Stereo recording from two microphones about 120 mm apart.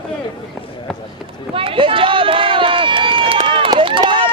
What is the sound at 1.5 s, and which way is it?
Run, 50° right (ahead or behind).